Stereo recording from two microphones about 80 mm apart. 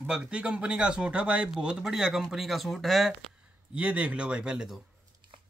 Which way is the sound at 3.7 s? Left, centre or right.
Centre.